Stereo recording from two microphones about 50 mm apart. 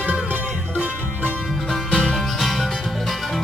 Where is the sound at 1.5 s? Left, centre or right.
Centre.